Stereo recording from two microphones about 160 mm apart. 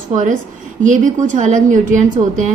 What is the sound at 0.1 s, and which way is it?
A woman's voice, 50° right (ahead or behind).